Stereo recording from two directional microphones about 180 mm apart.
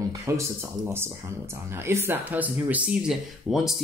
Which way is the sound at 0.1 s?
15° right (ahead or behind).